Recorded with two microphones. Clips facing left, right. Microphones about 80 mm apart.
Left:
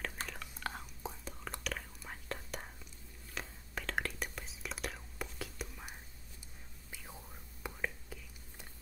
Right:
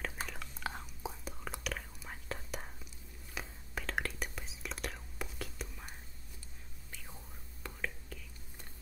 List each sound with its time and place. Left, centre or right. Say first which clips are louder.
0.0 s whispering: right 1 dB; centre